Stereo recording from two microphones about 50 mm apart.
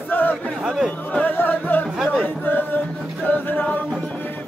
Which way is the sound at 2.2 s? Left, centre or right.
Left.